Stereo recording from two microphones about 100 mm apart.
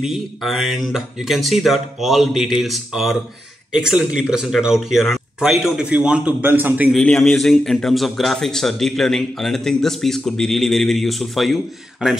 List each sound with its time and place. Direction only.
0.0 s a man's voice: centre (ahead or behind); by 6.9 s 20° right (ahead or behind)
6.9 s a man's voice: 5° left (ahead or behind)